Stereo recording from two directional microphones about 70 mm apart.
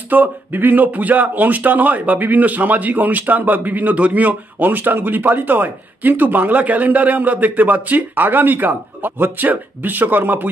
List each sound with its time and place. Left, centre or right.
0.1 s speech: right